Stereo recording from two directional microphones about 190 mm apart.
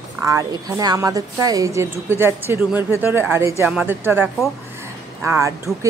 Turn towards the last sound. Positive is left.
turn(degrees=-15)  # may be behind; listen again after turning